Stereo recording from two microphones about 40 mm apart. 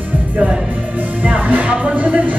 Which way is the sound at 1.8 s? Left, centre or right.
Right.